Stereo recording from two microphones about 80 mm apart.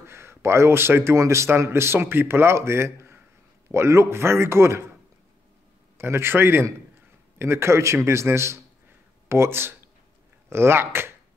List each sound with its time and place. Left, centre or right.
0.0 s speech: right
5.9 s speech: right